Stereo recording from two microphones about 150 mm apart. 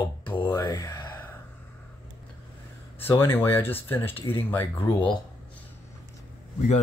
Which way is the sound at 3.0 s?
15° left (ahead or behind).